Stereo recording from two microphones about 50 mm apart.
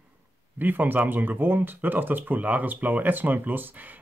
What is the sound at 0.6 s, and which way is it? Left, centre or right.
Speech, right.